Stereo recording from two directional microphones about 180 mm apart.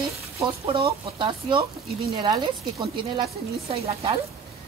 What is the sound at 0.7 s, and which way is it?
Speech, 30° right (ahead or behind).